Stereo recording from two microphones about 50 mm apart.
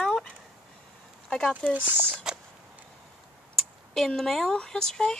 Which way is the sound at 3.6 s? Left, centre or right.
Centre.